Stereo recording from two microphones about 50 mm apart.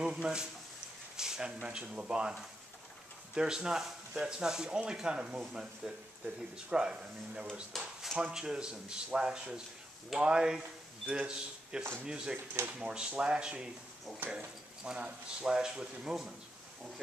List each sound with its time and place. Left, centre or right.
0.0 s speech: centre
1.1 s a sound: centre
1.6 s speech: right
3.3 s speech: centre
7.7 s speech: centre
8.2 s speech: centre
14.8 s speech: centre